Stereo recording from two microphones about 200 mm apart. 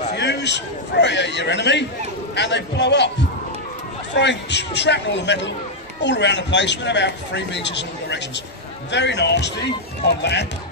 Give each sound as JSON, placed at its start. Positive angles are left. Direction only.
{"t": 0.1, "sound": "speech", "side_deg": 60}